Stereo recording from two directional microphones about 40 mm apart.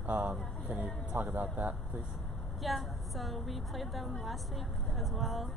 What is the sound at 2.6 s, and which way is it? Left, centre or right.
Speech, centre.